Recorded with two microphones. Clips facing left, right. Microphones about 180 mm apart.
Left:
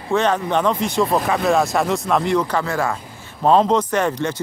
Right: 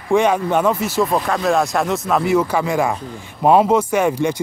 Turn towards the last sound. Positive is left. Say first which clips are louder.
# right 3 dB
turn(degrees=-10)  # may be behind; listen again after turning